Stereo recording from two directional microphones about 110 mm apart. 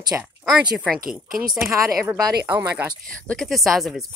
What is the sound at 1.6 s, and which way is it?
Speech, 25° right (ahead or behind).